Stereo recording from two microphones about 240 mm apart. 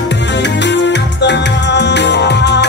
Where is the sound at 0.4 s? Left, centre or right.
Left.